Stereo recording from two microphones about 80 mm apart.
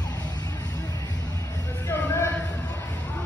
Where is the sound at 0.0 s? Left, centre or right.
Left.